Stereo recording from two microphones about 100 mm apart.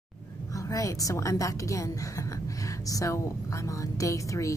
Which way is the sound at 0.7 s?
35° left (ahead or behind).